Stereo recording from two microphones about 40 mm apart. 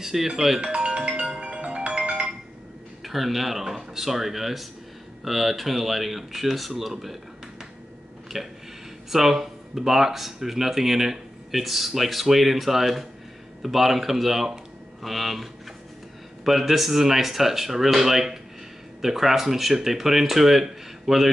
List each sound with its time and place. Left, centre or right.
0.0 s speech: centre
0.7 s music: centre
3.0 s speech: centre
8.3 s speech: centre
16.4 s speech: centre